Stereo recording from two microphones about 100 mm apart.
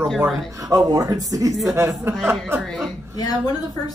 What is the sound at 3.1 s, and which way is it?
Speech, 40° left (ahead or behind).